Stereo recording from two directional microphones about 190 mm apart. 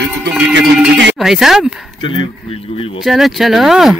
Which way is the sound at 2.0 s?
25° left (ahead or behind).